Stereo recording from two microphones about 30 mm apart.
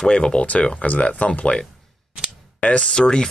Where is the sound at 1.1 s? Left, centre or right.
Left.